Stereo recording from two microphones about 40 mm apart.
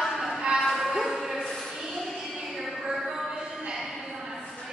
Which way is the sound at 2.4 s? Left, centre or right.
Centre.